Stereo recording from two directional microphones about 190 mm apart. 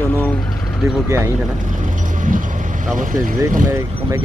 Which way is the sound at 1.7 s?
45° right (ahead or behind).